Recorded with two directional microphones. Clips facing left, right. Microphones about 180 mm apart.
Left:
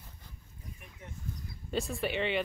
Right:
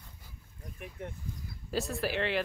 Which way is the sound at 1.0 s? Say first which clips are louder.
Right 8 dB; 60° right (ahead or behind).